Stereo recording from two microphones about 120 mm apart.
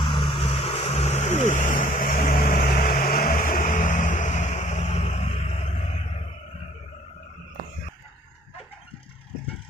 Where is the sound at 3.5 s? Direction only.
90° left; by 6.7 s 65° left (ahead or behind).